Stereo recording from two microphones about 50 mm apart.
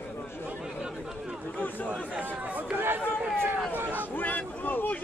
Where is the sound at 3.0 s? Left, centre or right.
Centre.